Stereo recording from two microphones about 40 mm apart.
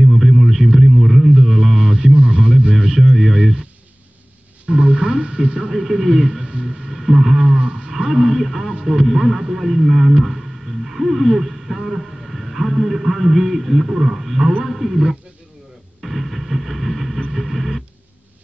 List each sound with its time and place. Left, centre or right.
0.0 s radio: centre
2.1 s radio: right
2.7 s radio: centre
4.6 s a sound: right
5.2 s speech: right
5.7 s speech: centre
6.9 s a sound: centre
7.9 s speech: centre
16.0 s a sound: centre